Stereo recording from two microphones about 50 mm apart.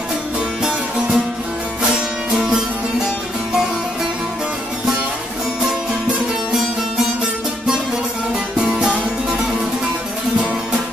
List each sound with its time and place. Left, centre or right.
0.6 s music: centre
2.3 s music: centre
8.5 s music: centre